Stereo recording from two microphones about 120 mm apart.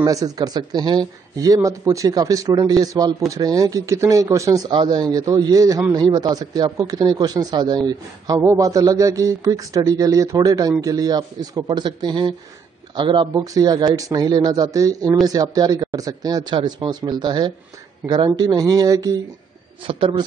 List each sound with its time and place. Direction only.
0.0 s speech: 30° right (ahead or behind)
19.9 s a man's voice: 45° right (ahead or behind)